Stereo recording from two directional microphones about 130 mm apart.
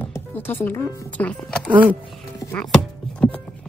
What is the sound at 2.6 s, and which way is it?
Chopping, 5° left (ahead or behind).